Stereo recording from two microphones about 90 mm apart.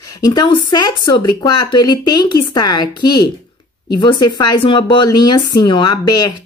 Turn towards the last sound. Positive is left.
turn(degrees=50)  # may be behind; listen again after turning